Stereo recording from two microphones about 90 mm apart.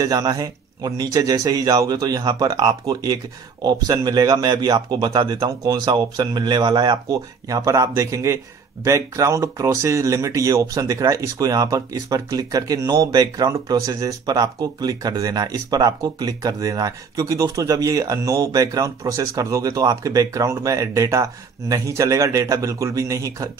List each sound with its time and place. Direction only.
0.0 s a man's voice: 40° right (ahead or behind)
7.1 s speech: 40° right (ahead or behind)